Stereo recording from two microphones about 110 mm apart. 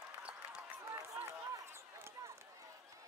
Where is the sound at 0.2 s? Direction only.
10° right (ahead or behind).